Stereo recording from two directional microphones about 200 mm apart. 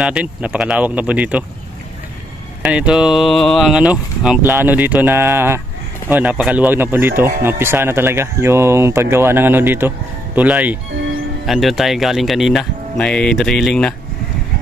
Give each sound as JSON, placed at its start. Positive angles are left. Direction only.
{"t": 0.0, "sound": "speech", "side_deg": -5}
{"t": 2.6, "sound": "speech", "side_deg": -5}